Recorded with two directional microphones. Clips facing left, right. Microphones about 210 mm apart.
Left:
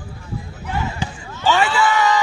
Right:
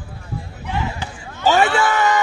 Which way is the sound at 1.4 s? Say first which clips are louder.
Right 2 dB; 45° right (ahead or behind).